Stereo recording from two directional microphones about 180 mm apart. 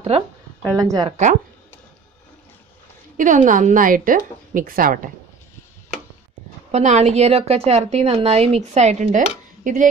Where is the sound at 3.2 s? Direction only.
45° right (ahead or behind).